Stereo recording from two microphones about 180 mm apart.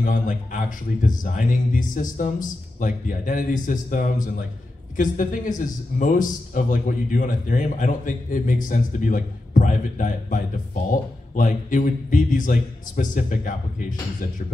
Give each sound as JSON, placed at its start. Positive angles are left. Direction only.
{"t": 0.0, "sound": "speech", "side_deg": 45}